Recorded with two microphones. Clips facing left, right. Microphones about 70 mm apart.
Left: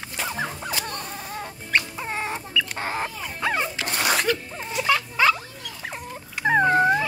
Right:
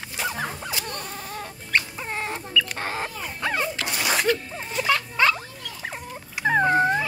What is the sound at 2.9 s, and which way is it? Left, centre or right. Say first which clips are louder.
Dog: left 1 dB; centre.